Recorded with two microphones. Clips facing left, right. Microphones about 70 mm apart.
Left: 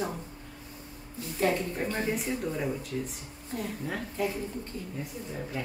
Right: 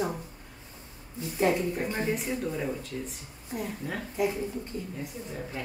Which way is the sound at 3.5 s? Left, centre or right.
Centre.